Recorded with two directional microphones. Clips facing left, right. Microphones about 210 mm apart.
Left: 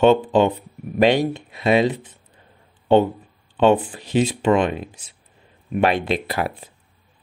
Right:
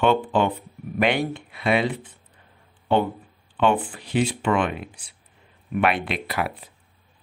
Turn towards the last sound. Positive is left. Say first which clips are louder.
# left 3 dB
turn(degrees=30)  # may be behind; listen again after turning